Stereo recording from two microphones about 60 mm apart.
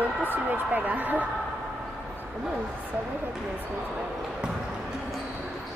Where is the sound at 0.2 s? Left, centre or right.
Right.